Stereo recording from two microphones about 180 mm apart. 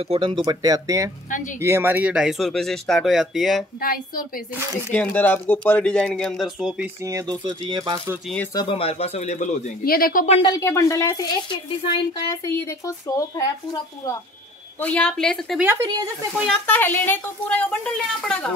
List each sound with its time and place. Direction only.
0.0 s speech: 30° right (ahead or behind)
1.3 s speech: 45° left (ahead or behind)
1.6 s speech: 15° right (ahead or behind)
3.8 s a woman's voice: 55° left (ahead or behind)
4.9 s speech: 10° left (ahead or behind)
7.0 s speech: 15° right (ahead or behind)
8.5 s speech: 30° left (ahead or behind)
9.8 s speech: 55° left (ahead or behind)
10.4 s speech: 15° left (ahead or behind)
14.8 s speech: 5° left (ahead or behind)
15.6 s a woman's voice: 15° right (ahead or behind)
16.6 s speech: 10° left (ahead or behind)